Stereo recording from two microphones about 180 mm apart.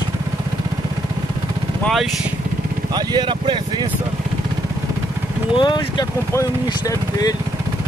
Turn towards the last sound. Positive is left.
turn(degrees=20)  # may be behind; listen again after turning